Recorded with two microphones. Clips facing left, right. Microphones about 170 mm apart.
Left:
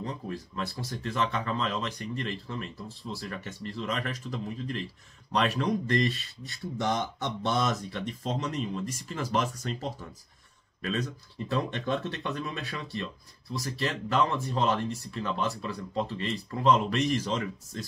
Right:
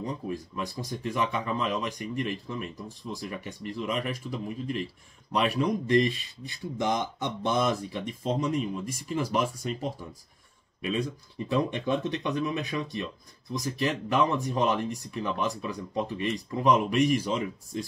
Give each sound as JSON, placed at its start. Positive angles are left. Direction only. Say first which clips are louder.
{"t": 0.0, "sound": "speech", "louder": "right 3 dB", "side_deg": -15}